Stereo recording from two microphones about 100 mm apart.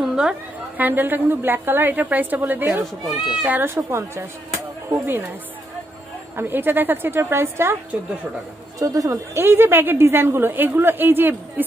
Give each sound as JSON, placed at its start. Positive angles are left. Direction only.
{"t": 0.0, "sound": "a sound", "side_deg": -5}
{"t": 0.7, "sound": "a woman's voice", "side_deg": -20}
{"t": 6.3, "sound": "a woman's voice", "side_deg": -20}
{"t": 8.7, "sound": "speech", "side_deg": -35}
{"t": 9.4, "sound": "a woman's voice", "side_deg": -25}